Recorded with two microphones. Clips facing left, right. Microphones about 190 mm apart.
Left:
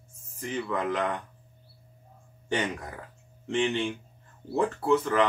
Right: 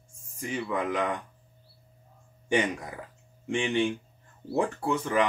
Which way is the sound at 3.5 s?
15° right (ahead or behind).